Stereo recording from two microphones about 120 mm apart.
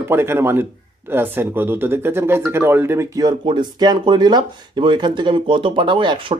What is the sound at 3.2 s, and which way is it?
Speech, 40° right (ahead or behind).